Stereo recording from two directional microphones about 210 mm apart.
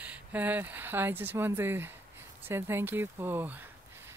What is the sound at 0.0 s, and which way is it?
Speech, 5° right (ahead or behind).